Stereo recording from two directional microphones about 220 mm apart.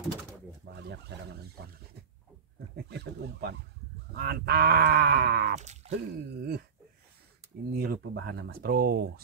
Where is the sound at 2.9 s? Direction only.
50° right (ahead or behind).